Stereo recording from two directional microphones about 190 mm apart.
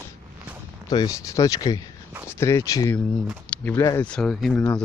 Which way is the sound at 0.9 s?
20° left (ahead or behind).